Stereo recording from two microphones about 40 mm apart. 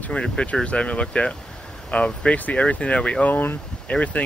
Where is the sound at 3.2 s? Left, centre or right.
Left.